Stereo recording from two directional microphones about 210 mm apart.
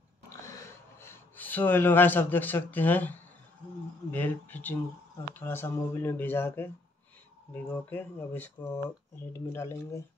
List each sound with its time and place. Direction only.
0.9 s speech: 10° left (ahead or behind)